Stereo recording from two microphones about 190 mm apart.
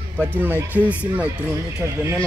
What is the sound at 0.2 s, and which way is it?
Speech, 10° right (ahead or behind).